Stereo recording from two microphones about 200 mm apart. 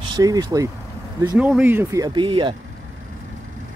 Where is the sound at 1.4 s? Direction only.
5° right (ahead or behind); by 2.6 s 25° right (ahead or behind).